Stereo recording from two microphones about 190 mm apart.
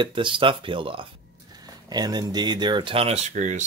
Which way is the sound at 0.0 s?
25° right (ahead or behind).